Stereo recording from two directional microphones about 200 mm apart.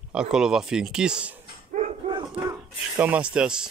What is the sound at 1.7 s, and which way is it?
Dog, 35° right (ahead or behind).